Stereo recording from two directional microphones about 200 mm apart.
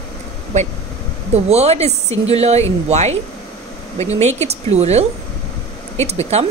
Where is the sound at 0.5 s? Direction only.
35° right (ahead or behind).